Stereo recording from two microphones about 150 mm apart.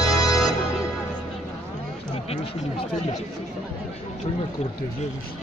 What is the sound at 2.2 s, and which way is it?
Speech, 40° left (ahead or behind).